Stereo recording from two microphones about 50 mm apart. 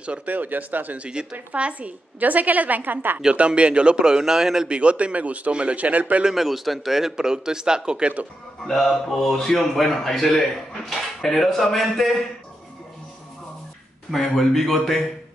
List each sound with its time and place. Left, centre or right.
0.0 s a woman's voice: right
3.3 s a man's voice: right
4.6 s a man's voice: right
6.3 s a man's voice: centre
8.6 s a man's voice: centre
14.1 s a man's voice: centre